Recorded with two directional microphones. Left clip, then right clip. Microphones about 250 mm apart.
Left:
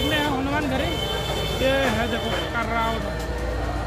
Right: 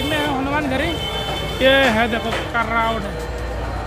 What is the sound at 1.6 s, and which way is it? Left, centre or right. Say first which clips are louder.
Speech: right 8 dB; right.